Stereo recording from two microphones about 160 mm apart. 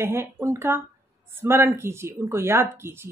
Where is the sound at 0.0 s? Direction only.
15° right (ahead or behind).